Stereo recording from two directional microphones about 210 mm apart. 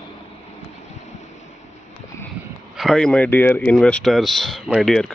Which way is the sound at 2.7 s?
5° left (ahead or behind).